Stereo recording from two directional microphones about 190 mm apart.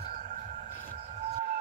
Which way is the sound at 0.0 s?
45° right (ahead or behind).